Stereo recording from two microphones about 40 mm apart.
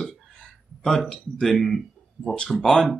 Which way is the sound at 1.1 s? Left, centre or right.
Centre.